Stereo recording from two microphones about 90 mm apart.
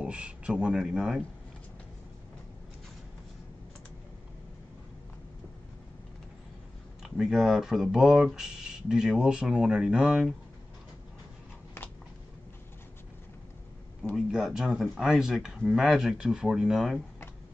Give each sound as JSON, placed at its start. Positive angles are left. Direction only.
{"t": 0.0, "sound": "speech", "side_deg": -10}
{"t": 7.0, "sound": "speech", "side_deg": -5}
{"t": 14.1, "sound": "speech", "side_deg": -5}